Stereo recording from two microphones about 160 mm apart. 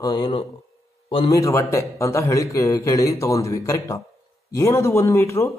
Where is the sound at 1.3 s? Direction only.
20° left (ahead or behind).